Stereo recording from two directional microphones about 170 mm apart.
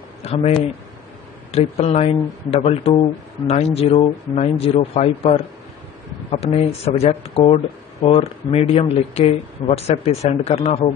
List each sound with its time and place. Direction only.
0.2 s speech: 40° left (ahead or behind)
6.3 s speech: 35° left (ahead or behind)